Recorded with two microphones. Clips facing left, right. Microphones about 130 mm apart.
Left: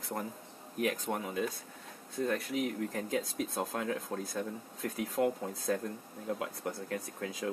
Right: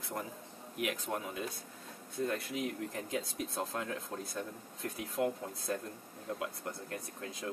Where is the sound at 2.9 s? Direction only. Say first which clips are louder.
Left 4 dB; 45° left (ahead or behind).